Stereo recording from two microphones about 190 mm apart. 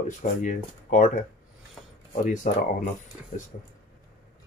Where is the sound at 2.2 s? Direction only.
45° left (ahead or behind).